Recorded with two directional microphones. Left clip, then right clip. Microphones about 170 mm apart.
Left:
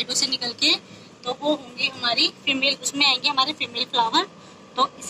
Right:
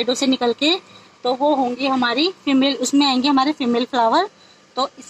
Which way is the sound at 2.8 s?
65° right (ahead or behind).